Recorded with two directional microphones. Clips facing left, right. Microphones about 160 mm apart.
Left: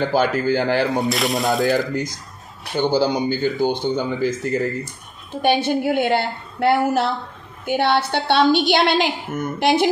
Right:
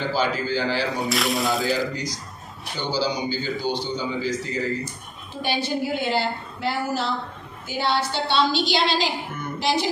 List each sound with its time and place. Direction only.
0.1 s speech: 55° left (ahead or behind)
1.0 s speech: centre (ahead or behind)
1.7 s a woman's voice: 55° left (ahead or behind)